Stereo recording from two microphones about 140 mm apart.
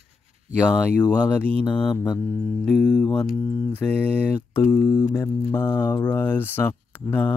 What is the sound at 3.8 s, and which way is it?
Mantra, 10° left (ahead or behind).